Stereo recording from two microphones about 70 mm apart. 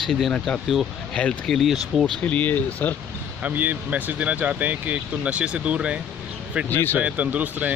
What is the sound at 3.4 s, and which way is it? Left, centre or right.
Speech, right.